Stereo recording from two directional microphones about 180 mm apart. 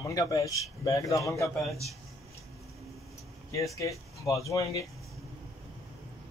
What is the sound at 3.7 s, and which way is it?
Speech, 15° left (ahead or behind).